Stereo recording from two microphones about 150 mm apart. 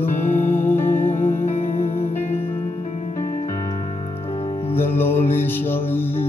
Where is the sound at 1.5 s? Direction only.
45° left (ahead or behind).